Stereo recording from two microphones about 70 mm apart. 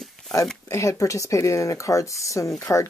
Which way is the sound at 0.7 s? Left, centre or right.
Left.